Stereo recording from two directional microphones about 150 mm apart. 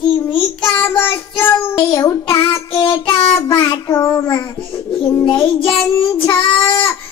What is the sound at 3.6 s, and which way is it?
Child singing, 20° left (ahead or behind).